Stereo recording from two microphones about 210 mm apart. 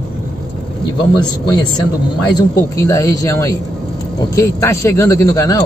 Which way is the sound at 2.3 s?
15° left (ahead or behind).